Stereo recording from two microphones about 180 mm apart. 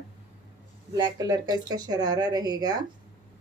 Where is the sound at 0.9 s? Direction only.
20° right (ahead or behind).